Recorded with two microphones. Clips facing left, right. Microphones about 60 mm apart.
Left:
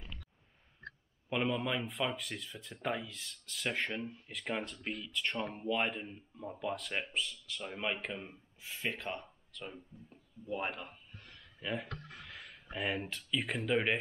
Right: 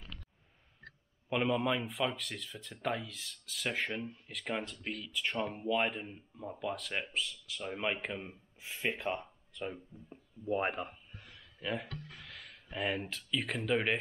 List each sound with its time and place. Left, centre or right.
1.3 s speech: centre
9.0 s speech: centre
11.1 s a sound: centre
12.3 s speech: centre